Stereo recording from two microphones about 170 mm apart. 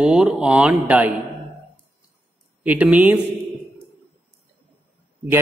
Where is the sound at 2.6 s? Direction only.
10° right (ahead or behind).